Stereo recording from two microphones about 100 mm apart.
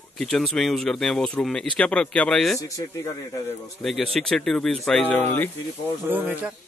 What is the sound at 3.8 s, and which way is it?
Speech, 5° left (ahead or behind).